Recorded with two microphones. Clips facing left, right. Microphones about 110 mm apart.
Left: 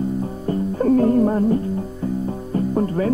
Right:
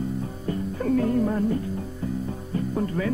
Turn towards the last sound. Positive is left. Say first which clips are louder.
# left 6 dB
turn(degrees=35)  # may be behind; listen again after turning